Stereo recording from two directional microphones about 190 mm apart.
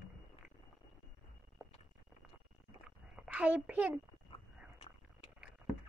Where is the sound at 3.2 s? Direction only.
5° right (ahead or behind).